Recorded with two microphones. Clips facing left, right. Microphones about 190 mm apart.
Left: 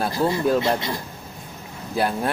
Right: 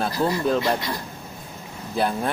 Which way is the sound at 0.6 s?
25° left (ahead or behind).